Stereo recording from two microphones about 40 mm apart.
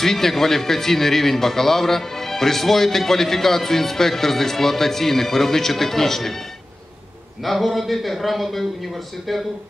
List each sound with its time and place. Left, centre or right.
0.0 s a man's voice: centre
7.4 s speech: centre